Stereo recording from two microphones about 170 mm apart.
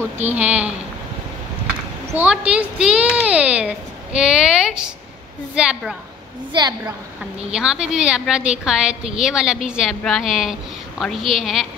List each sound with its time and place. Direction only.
0.4 s speech: 10° right (ahead or behind)
2.0 s a woman's voice: 10° right (ahead or behind)
6.5 s a woman's voice: 25° right (ahead or behind)
7.5 s a child's voice: 5° right (ahead or behind)